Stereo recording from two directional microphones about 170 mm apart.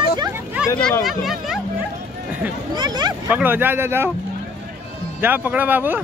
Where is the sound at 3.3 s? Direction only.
10° right (ahead or behind).